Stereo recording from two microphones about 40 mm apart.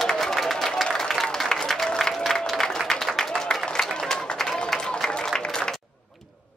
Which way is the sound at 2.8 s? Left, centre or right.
Right.